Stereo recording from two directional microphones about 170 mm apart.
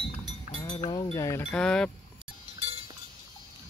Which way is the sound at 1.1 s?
20° left (ahead or behind).